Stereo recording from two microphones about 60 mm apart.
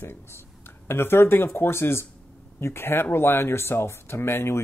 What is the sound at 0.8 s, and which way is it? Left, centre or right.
Speech, left.